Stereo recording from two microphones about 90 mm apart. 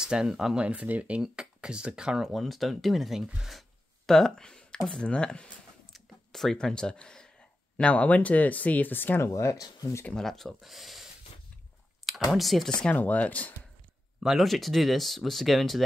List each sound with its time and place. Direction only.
0.0 s speech: 5° right (ahead or behind); by 5.5 s 10° left (ahead or behind)
5.9 s a sound: 5° left (ahead or behind)
7.7 s speech: 15° left (ahead or behind)
9.2 s speech: 35° left (ahead or behind)
10.0 s speech: 5° left (ahead or behind)
12.3 s speech: centre (ahead or behind); by 13.5 s 15° left (ahead or behind)
14.2 s speech: centre (ahead or behind)